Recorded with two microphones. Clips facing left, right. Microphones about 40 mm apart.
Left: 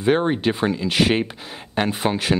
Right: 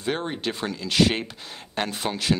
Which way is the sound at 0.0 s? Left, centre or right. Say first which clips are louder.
Left 9 dB; left.